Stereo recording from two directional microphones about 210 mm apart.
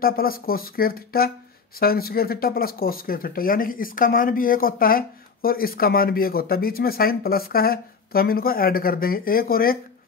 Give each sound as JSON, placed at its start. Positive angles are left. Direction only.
{"t": 0.0, "sound": "speech", "side_deg": 45}